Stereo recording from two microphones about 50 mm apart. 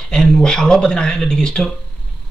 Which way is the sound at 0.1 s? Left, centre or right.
Centre.